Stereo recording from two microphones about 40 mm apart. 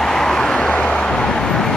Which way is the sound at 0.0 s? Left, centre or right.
Centre.